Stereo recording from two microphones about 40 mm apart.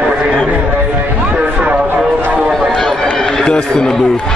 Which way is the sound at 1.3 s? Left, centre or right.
Right.